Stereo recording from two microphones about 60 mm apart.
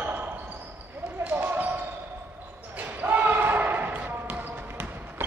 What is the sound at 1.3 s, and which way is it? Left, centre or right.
Basketball bounce, right.